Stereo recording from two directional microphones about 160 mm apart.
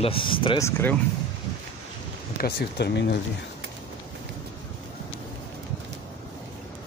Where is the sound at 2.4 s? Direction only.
70° left (ahead or behind); by 3.2 s 90° left.